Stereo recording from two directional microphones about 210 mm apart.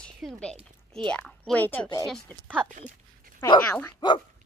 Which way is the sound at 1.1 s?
5° left (ahead or behind).